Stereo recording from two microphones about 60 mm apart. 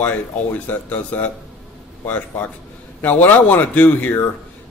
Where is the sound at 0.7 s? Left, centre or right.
Left.